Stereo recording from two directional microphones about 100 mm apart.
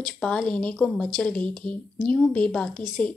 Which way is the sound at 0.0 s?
5° left (ahead or behind).